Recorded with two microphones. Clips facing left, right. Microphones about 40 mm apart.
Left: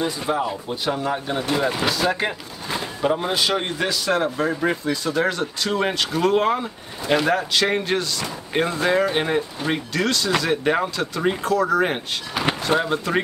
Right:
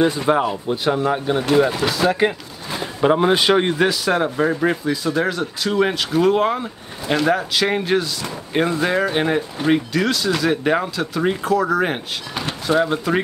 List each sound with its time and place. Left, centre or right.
0.0 s speech: right
0.7 s speech: centre
1.7 s speech: centre
3.0 s speech: right; by 13.2 s centre